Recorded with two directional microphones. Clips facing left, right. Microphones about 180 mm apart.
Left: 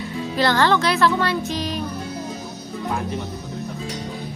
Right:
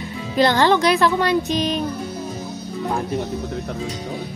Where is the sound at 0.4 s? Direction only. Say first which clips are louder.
Right 3 dB; 15° right (ahead or behind).